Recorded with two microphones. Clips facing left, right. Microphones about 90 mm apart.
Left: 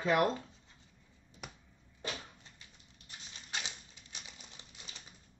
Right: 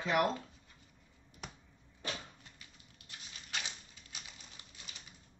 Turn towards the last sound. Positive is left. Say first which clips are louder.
# even
turn(degrees=25)  # may be behind; listen again after turning